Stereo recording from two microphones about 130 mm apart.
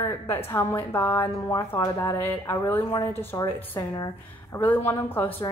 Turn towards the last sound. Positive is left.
turn(degrees=15)  # may be behind; listen again after turning